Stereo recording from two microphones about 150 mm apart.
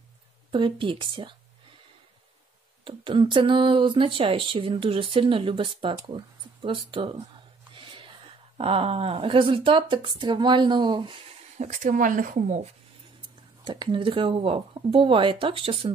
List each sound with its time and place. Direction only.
0.5 s speech: 35° right (ahead or behind)
2.8 s speech: 35° right (ahead or behind)
7.7 s a sound: 35° right (ahead or behind)
8.5 s speech: 40° right (ahead or behind)
11.5 s speech: 55° right (ahead or behind)
13.7 s speech: 30° right (ahead or behind)